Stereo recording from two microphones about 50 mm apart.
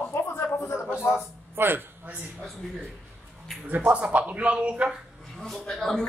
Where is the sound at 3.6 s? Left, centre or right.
Right.